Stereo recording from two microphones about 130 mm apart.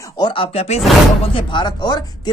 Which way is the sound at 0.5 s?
55° left (ahead or behind).